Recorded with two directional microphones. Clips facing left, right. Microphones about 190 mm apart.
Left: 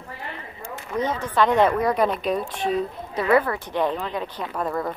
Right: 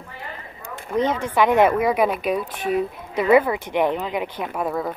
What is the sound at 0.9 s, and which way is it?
Speech, 20° right (ahead or behind).